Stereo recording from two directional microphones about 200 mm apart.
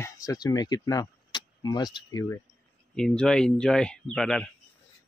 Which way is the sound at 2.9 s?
5° left (ahead or behind).